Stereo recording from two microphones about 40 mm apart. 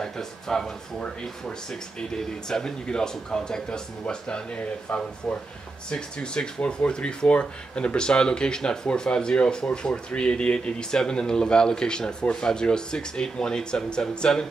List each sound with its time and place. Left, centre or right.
0.0 s speech: centre
4.9 s speech: left